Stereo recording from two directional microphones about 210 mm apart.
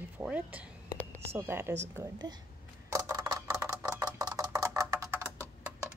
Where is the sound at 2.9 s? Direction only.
15° right (ahead or behind).